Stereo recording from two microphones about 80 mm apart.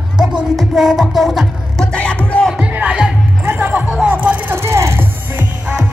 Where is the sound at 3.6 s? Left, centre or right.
Centre.